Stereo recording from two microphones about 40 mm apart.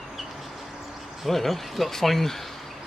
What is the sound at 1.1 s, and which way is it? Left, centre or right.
Speech, centre.